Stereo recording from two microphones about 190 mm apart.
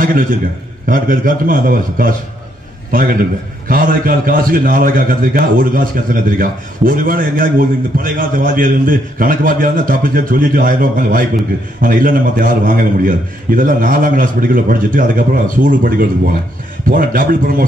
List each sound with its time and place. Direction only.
0.8 s a man's voice: 45° right (ahead or behind)